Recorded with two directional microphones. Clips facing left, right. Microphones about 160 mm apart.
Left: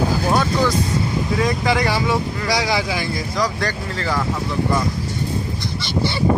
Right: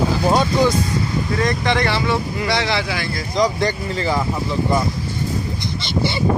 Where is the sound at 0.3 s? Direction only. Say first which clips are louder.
Right 3 dB; 15° right (ahead or behind).